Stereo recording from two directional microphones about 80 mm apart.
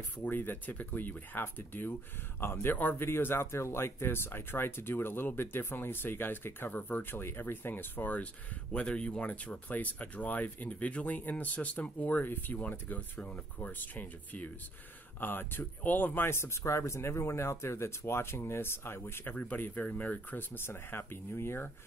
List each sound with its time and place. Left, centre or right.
0.2 s speech: left